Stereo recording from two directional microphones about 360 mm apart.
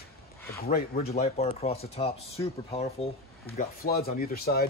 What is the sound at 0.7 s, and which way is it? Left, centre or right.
Speech, left.